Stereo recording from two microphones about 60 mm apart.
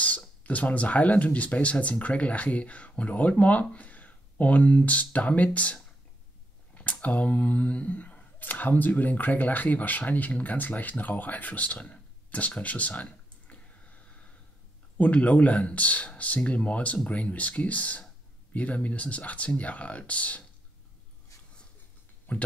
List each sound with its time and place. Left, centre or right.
0.0 s speech: left
15.0 s speech: left
22.3 s speech: left